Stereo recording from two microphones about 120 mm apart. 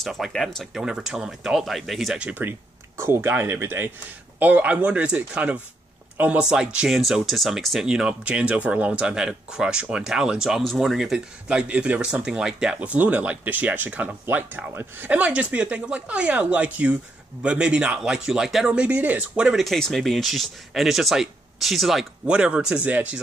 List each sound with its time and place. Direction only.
0.0 s speech: centre (ahead or behind)
2.2 s speech: 15° right (ahead or behind)